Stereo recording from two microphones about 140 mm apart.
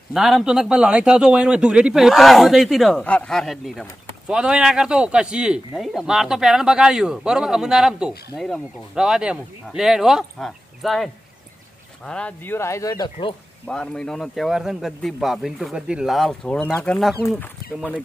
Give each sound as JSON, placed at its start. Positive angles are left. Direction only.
{"t": 0.1, "sound": "speech", "side_deg": 0}
{"t": 13.7, "sound": "speech", "side_deg": 5}